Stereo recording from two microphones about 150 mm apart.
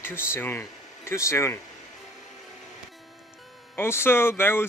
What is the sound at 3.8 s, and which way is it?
Speech, 15° left (ahead or behind).